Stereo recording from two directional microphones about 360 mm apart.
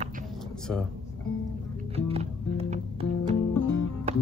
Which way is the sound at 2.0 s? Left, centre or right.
Centre.